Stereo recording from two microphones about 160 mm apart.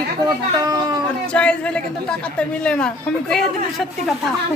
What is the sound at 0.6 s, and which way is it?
Speech, 25° right (ahead or behind).